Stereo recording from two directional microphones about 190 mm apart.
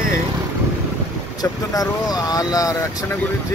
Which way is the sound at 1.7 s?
20° left (ahead or behind).